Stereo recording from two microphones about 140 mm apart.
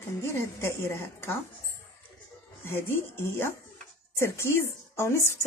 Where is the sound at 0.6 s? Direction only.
15° left (ahead or behind).